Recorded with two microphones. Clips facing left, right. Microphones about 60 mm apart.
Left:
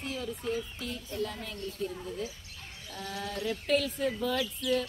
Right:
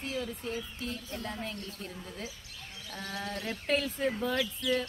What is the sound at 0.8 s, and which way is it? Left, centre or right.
Speech, right.